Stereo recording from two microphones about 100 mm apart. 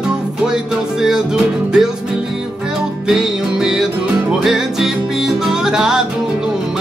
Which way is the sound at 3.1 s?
5° right (ahead or behind).